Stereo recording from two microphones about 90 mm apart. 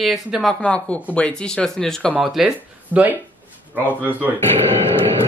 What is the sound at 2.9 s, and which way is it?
Speech, 20° left (ahead or behind).